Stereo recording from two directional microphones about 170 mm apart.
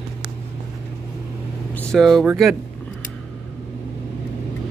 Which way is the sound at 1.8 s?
5° left (ahead or behind).